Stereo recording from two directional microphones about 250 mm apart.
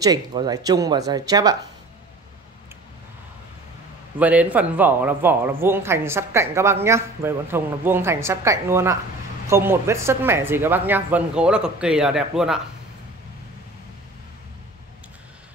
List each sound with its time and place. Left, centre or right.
0.0 s speech: centre
4.2 s speech: centre